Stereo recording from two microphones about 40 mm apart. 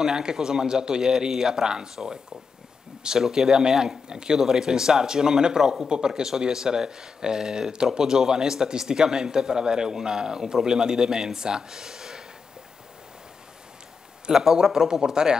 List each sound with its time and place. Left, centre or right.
0.0 s speech: centre
14.3 s speech: centre